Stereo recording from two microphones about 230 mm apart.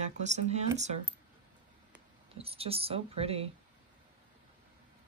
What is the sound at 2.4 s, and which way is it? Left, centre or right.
Speech, right.